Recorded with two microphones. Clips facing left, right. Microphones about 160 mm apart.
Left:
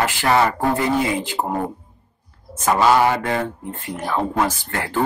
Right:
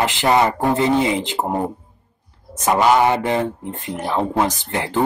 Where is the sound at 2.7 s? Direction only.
20° right (ahead or behind).